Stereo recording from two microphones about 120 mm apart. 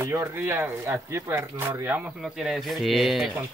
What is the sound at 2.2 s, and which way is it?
Speech, 5° right (ahead or behind).